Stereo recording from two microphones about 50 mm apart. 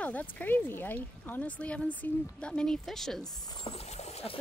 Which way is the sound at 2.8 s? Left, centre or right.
Centre.